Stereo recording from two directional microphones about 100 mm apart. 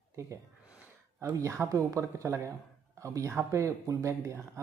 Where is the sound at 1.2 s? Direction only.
30° right (ahead or behind).